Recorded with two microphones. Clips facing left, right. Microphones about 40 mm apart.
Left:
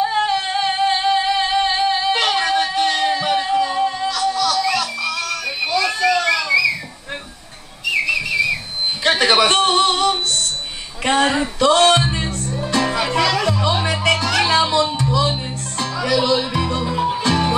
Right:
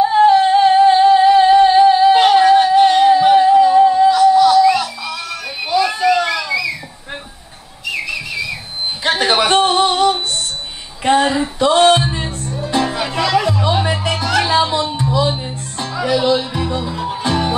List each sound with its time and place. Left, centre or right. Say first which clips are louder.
0.3 s singing: right 9 dB; centre
0.7 s music: right 7 dB; centre
2.1 s a sound: right 8 dB; centre
3.2 s music: right 9 dB; centre
4.2 s music: right 7 dB; centre
4.6 s a sound: right 7 dB; centre
7.8 s whistle: left 3 dB; centre
9.0 s a sound: even; centre
11.6 s music: right 2 dB; centre
12.7 s music: even; centre
16.8 s music: left 3 dB; centre
17.3 s music: right 3 dB; centre